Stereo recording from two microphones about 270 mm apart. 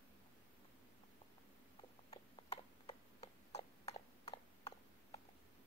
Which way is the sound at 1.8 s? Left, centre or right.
Left.